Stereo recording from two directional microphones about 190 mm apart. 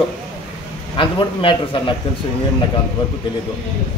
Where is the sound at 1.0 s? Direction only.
25° left (ahead or behind).